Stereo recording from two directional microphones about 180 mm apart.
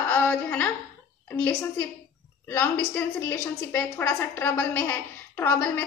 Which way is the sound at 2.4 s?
10° left (ahead or behind).